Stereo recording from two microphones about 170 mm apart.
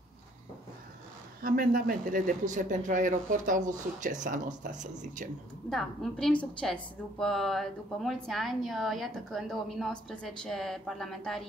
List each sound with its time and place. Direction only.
1.4 s speech: 55° right (ahead or behind)
5.7 s a woman's voice: 5° left (ahead or behind)